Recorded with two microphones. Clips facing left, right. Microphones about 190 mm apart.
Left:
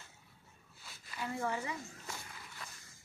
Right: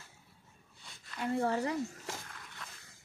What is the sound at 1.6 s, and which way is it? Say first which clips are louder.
Speech: right 8 dB; 70° right (ahead or behind).